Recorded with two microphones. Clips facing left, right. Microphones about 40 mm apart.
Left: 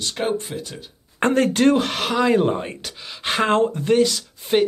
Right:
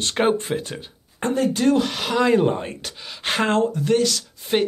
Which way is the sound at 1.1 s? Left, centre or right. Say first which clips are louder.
Left 3 dB; left.